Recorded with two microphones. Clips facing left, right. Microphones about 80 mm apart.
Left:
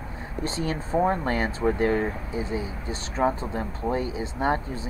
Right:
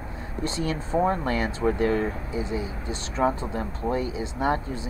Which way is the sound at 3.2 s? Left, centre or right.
Centre.